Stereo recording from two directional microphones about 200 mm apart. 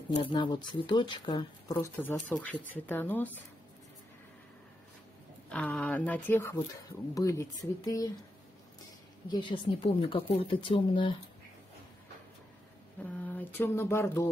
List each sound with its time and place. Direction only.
0.1 s speech: 25° left (ahead or behind); by 3.3 s 10° left (ahead or behind)
5.5 s speech: 5° left (ahead or behind)
9.3 s speech: 25° left (ahead or behind)
13.0 s a sound: 10° left (ahead or behind)